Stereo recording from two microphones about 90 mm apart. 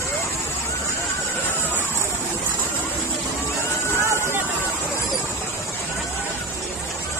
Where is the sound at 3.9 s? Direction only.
30° right (ahead or behind).